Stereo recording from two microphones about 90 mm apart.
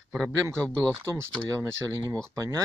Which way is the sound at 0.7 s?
30° right (ahead or behind).